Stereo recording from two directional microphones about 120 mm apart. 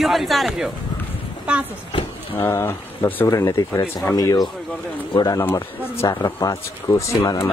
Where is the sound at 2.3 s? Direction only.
25° left (ahead or behind).